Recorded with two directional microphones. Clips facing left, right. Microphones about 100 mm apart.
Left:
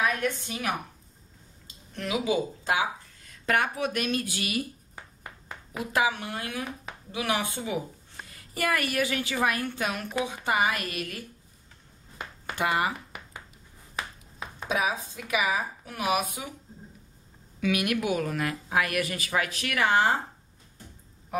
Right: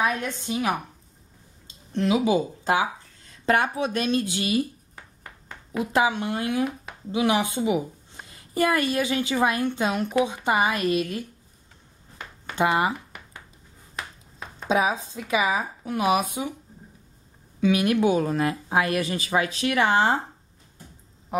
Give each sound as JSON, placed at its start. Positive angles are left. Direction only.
{"t": 0.0, "sound": "speech", "side_deg": -20}
{"t": 1.9, "sound": "speech", "side_deg": -30}
{"t": 4.9, "sound": "a sound", "side_deg": 5}
{"t": 5.9, "sound": "speech", "side_deg": -25}
{"t": 12.5, "sound": "speech", "side_deg": -25}
{"t": 14.7, "sound": "speech", "side_deg": -25}
{"t": 17.6, "sound": "speech", "side_deg": -30}
{"t": 21.3, "sound": "a sound", "side_deg": -25}